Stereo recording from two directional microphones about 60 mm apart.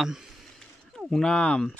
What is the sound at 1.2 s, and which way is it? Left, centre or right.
Speech, centre.